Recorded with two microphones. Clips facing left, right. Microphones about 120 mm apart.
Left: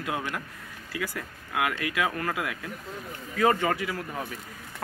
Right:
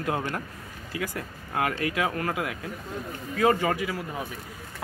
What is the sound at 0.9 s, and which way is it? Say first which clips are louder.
Speech: right 1 dB; 20° right (ahead or behind).